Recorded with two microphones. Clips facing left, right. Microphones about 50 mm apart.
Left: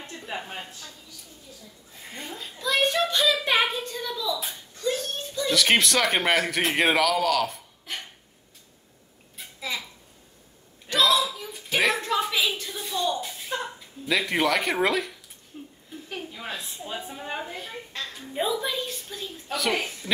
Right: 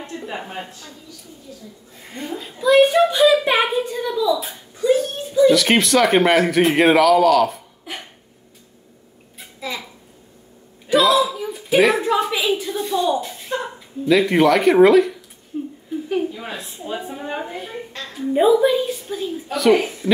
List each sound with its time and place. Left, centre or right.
0.0 s speech: right
2.3 s a woman's voice: centre
7.8 s dog: centre
9.4 s a sound: centre
10.9 s a woman's voice: centre
13.5 s a sound: centre
14.0 s speech: centre
15.5 s a sound: centre
16.1 s a woman's voice: centre